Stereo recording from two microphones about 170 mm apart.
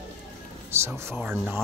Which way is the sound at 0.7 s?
15° right (ahead or behind).